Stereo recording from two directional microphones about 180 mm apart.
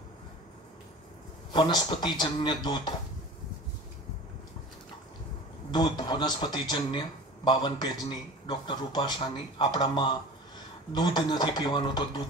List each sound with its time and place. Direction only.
1.5 s speech: 25° left (ahead or behind)
5.7 s speech: 25° left (ahead or behind)